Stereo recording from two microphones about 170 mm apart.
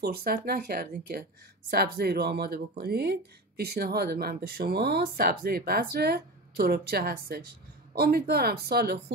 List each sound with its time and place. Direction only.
0.0 s speech: 65° right (ahead or behind)